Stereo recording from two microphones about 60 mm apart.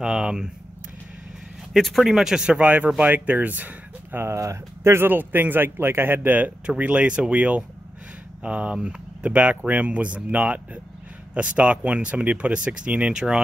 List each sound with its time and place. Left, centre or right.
0.0 s speech: centre
1.7 s speech: centre
2.6 s speech: right
4.2 s speech: right
5.0 s a man's voice: right; by 13.4 s centre